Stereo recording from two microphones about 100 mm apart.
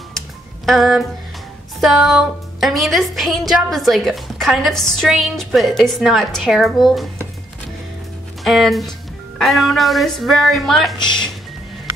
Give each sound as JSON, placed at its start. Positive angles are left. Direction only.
{"t": 0.7, "sound": "a woman's voice", "side_deg": 0}
{"t": 8.5, "sound": "a woman's voice", "side_deg": 0}